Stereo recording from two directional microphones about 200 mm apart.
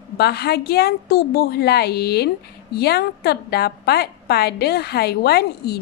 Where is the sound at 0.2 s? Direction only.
55° left (ahead or behind).